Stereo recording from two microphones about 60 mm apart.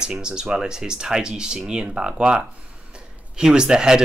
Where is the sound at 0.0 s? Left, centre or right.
Centre.